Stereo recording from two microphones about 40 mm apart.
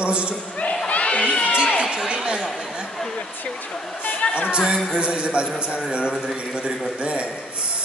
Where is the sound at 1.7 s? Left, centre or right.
Right.